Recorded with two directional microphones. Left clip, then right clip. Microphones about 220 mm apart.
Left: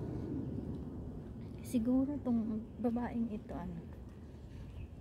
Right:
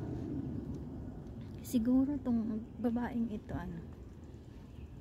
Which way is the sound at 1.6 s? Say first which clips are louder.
Right 2 dB; 10° right (ahead or behind).